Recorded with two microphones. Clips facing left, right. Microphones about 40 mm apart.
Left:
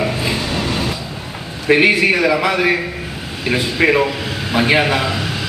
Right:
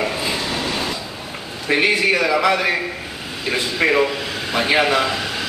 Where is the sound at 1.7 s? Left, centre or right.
Left.